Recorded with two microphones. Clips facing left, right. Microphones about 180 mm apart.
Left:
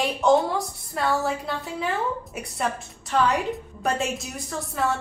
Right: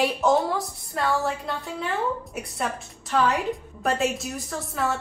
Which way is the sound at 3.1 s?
Centre (ahead or behind).